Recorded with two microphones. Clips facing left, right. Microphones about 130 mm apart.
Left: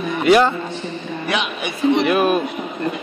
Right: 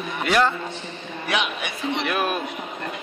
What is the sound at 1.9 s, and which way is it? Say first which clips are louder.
Speech: left 7 dB; 5° left (ahead or behind).